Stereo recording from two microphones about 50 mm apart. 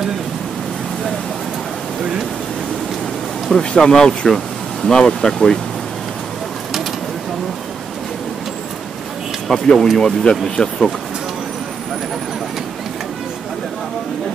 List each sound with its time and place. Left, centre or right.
3.4 s speech: centre
9.5 s speech: centre